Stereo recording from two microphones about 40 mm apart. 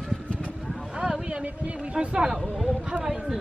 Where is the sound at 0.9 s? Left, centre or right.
Centre.